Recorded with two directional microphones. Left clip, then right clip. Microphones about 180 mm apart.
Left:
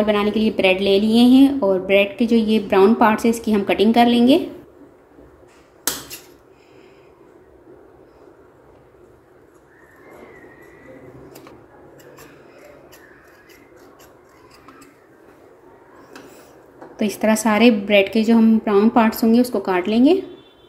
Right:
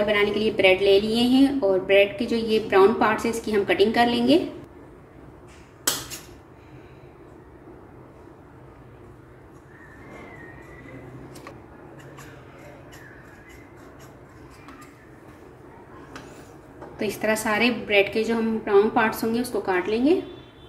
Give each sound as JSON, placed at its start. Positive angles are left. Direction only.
{"t": 0.0, "sound": "a woman's voice", "side_deg": 30}
{"t": 17.0, "sound": "a woman's voice", "side_deg": 40}